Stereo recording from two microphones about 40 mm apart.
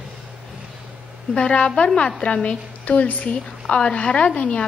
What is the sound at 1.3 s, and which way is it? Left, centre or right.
A woman's voice, left.